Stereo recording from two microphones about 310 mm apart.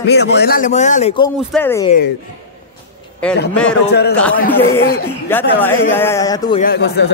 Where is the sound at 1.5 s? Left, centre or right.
Centre.